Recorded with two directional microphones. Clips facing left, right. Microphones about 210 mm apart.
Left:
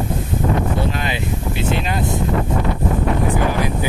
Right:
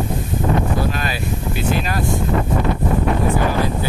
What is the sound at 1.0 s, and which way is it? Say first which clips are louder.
Speech: left 1 dB; 20° left (ahead or behind).